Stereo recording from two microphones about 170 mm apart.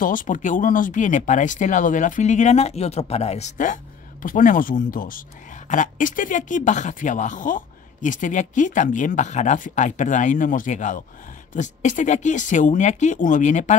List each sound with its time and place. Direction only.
0.0 s speech: 55° left (ahead or behind)